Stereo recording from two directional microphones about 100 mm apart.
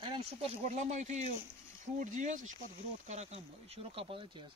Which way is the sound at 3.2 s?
90° right.